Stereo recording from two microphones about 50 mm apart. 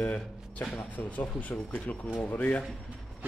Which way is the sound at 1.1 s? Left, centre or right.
Left.